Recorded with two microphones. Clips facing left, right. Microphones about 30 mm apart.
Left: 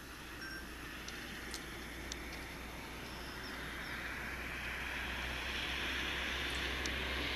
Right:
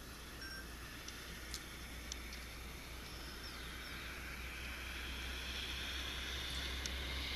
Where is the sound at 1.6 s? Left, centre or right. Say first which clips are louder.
Left 5 dB; centre.